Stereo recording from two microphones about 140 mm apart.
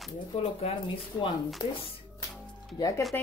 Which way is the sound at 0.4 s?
45° left (ahead or behind).